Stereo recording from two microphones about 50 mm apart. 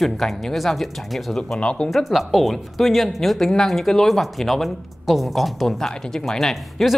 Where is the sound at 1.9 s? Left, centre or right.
Centre.